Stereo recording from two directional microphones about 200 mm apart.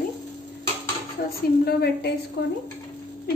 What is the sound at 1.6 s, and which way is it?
Speech, 55° left (ahead or behind).